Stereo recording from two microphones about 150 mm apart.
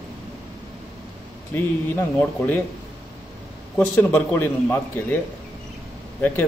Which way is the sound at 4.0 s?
15° left (ahead or behind).